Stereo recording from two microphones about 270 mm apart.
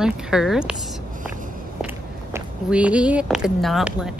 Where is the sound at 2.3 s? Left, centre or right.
Centre.